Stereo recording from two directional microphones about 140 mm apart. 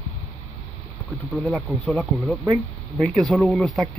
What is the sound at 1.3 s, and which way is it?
Speech, 5° left (ahead or behind).